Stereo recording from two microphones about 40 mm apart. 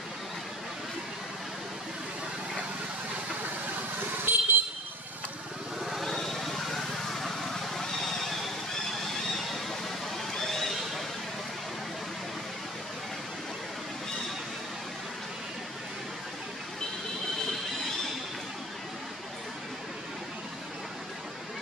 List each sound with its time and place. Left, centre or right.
4.2 s vehicle: right
6.0 s vehicle: centre
10.3 s a sound: centre